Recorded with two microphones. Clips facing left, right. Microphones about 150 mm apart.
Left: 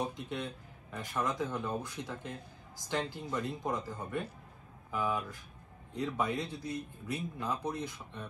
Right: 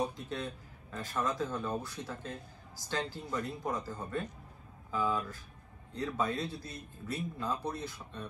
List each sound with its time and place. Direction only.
0.1 s speech: 20° left (ahead or behind)